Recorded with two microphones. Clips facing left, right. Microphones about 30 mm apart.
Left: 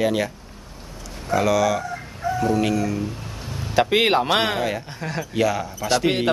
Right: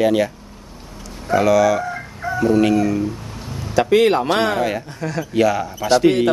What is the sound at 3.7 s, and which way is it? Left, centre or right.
Speech, left.